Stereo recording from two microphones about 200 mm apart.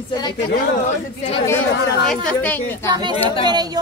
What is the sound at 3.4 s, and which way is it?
Speech, 20° right (ahead or behind).